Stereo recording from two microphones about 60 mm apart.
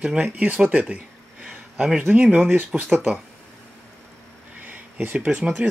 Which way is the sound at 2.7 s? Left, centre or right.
Centre.